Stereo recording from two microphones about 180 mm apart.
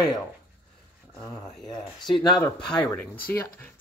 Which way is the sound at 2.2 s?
25° left (ahead or behind).